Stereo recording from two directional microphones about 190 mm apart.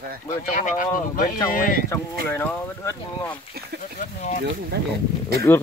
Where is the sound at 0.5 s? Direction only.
45° left (ahead or behind).